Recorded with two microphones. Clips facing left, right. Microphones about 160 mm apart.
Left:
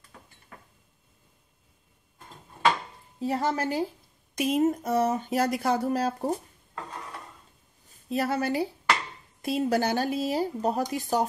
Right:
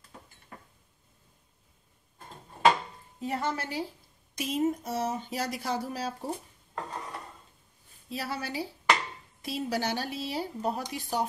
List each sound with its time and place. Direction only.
3.2 s speech: 35° left (ahead or behind)
4.4 s speech: 55° left (ahead or behind)
8.1 s speech: 50° left (ahead or behind)